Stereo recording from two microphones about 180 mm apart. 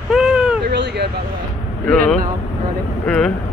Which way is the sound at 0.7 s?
70° right (ahead or behind).